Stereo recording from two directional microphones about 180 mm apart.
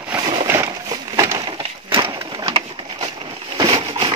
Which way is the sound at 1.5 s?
30° right (ahead or behind).